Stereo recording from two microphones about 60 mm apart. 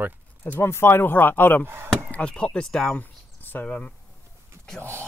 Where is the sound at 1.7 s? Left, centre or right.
Right.